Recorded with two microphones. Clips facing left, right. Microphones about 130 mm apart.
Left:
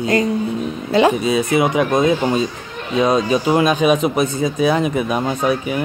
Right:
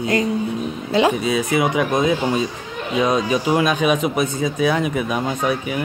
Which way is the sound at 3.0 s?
30° left (ahead or behind).